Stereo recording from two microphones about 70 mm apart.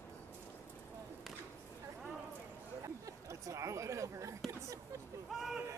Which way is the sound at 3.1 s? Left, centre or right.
Right.